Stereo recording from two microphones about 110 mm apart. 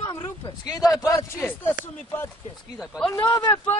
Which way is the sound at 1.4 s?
20° left (ahead or behind).